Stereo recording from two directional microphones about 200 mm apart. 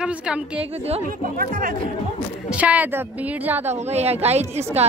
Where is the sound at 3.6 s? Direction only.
30° right (ahead or behind).